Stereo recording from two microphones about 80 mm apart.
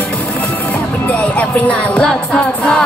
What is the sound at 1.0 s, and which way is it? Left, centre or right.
Music, centre.